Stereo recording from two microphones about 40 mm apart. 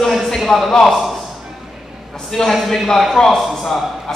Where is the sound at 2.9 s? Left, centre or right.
Centre.